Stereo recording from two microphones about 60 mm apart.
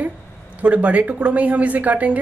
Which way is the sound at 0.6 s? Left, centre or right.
Right.